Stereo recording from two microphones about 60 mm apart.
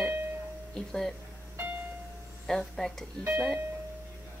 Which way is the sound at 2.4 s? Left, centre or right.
Centre.